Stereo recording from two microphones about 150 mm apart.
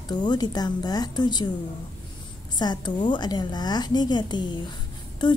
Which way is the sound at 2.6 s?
30° left (ahead or behind).